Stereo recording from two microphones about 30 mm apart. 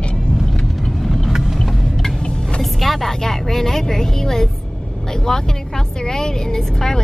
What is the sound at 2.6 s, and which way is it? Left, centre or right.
Speech, centre.